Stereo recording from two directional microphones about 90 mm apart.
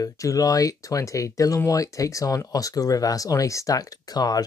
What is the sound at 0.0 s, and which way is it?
Speech, 40° left (ahead or behind).